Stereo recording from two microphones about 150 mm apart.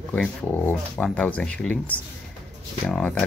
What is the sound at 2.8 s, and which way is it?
Speech, 5° left (ahead or behind).